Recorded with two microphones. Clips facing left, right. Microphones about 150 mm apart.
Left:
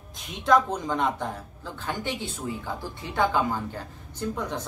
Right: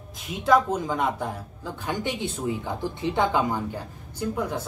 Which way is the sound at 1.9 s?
20° right (ahead or behind).